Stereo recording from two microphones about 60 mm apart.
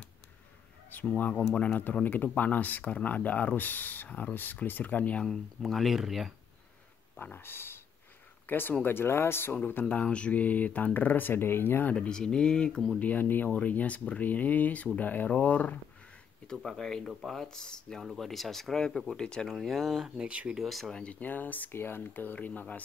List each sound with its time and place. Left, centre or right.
0.8 s speech: left
5.2 s speech: centre
7.2 s speech: left
9.6 s speech: left
11.9 s speech: centre
13.0 s speech: left
16.4 s speech: centre
18.0 s speech: centre
19.4 s speech: centre
20.2 s speech: right
20.5 s speech: centre
20.9 s speech: left